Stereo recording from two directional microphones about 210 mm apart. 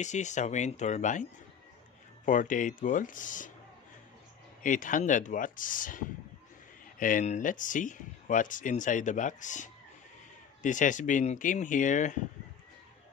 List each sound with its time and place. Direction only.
0.0 s speech: 35° left (ahead or behind)
2.2 s speech: 40° left (ahead or behind)
4.6 s speech: 40° left (ahead or behind)